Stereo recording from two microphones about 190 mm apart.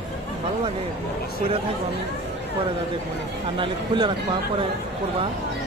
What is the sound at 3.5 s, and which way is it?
Speech, 25° right (ahead or behind).